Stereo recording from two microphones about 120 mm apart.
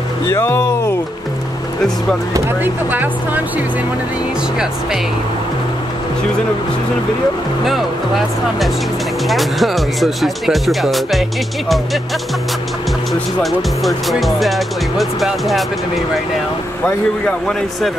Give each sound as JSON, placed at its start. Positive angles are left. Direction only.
{"t": 0.3, "sound": "a sound", "side_deg": 20}
{"t": 2.3, "sound": "speech", "side_deg": -20}
{"t": 9.3, "sound": "speech", "side_deg": 0}
{"t": 13.4, "sound": "speech", "side_deg": 0}
{"t": 17.5, "sound": "speech", "side_deg": 5}